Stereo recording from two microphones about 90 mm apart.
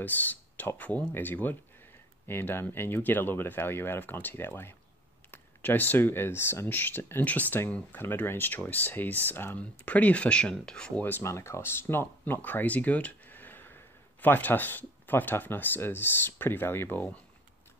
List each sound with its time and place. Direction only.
0.0 s speech: 20° left (ahead or behind)
11.2 s speech: 30° left (ahead or behind)